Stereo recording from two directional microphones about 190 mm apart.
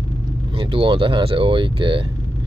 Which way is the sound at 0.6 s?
25° right (ahead or behind).